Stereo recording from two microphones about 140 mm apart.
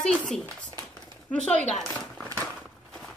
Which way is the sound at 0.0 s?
5° left (ahead or behind).